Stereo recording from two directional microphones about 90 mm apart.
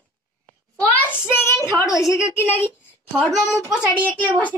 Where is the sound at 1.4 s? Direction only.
30° left (ahead or behind).